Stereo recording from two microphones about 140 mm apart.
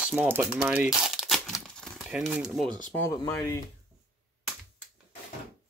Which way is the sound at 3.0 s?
15° left (ahead or behind).